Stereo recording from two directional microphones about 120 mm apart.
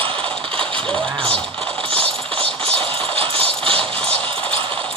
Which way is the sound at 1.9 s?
50° right (ahead or behind).